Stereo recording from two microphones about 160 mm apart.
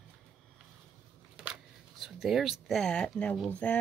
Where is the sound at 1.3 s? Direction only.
5° right (ahead or behind).